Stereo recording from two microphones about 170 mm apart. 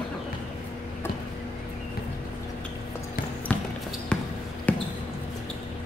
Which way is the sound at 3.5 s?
5° left (ahead or behind).